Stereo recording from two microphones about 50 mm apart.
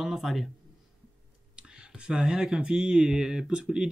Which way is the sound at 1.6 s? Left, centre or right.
Centre.